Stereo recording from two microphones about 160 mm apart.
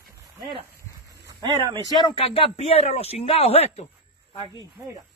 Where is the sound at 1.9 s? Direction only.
30° left (ahead or behind).